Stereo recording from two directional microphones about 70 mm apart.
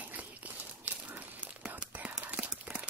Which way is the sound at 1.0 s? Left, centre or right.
Right.